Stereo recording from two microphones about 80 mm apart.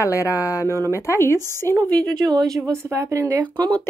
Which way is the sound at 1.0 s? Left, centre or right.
Left.